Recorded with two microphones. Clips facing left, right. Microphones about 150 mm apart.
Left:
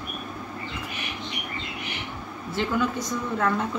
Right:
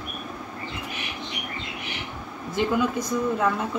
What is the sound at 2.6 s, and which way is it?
Speech, 15° right (ahead or behind).